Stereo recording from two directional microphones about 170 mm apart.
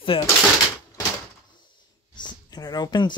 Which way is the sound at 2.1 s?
25° left (ahead or behind).